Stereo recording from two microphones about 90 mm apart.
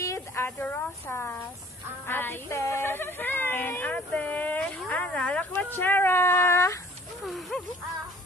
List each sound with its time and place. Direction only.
0.0 s a sound: 35° left (ahead or behind)
0.6 s speech: 20° left (ahead or behind)
7.2 s speech: centre (ahead or behind)